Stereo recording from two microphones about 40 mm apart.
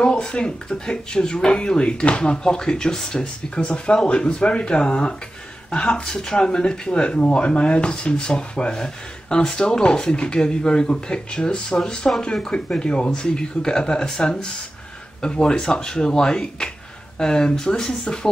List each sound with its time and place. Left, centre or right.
0.0 s speech: left